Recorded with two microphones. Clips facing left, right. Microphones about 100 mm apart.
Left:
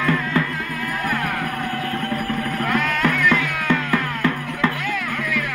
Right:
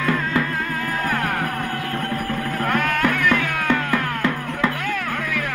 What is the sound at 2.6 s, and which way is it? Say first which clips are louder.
Music: right 1 dB; 50° right (ahead or behind).